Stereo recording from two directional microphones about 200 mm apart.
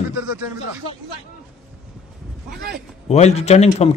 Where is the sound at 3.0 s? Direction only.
35° left (ahead or behind).